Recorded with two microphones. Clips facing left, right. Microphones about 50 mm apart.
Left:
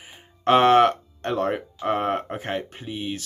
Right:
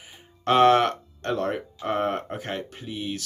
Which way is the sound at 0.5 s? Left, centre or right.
Left.